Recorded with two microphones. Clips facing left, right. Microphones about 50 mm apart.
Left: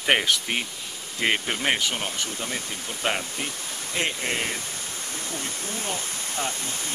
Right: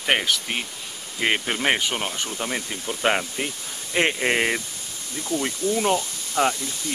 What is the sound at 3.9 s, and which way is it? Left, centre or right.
Speech, right.